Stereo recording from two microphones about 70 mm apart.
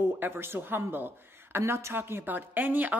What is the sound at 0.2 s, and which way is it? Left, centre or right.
Speech, right.